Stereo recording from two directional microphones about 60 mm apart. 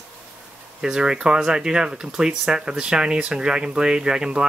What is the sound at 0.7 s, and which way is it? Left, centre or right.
Speech, centre.